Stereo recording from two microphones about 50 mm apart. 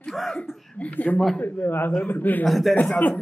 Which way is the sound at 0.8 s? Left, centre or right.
Left.